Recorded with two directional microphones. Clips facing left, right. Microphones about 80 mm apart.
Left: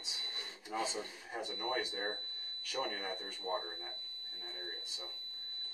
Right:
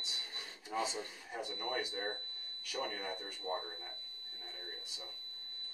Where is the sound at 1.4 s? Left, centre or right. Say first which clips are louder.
Left 1 dB; left.